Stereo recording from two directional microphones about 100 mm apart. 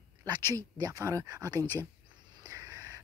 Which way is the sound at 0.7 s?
40° right (ahead or behind).